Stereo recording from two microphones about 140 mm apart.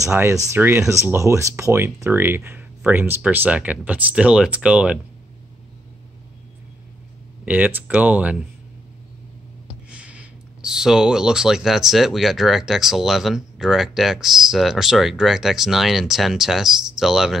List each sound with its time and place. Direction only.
0.0 s speech: 20° right (ahead or behind)
7.4 s speech: 10° right (ahead or behind)
9.8 s speech: 10° right (ahead or behind)